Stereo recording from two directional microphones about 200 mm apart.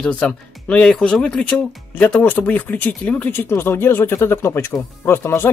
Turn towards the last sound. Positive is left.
turn(degrees=10)  # may be behind; listen again after turning